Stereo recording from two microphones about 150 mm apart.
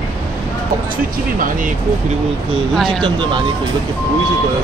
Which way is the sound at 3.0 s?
35° right (ahead or behind).